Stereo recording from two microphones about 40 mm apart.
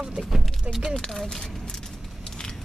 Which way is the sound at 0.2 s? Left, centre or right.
Right.